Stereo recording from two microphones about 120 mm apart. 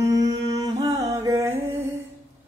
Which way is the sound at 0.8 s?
25° right (ahead or behind).